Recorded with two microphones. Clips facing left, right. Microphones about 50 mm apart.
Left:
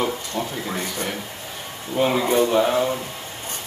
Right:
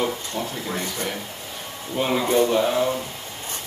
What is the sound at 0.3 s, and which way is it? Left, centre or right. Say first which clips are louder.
Mantra: left 3 dB; centre.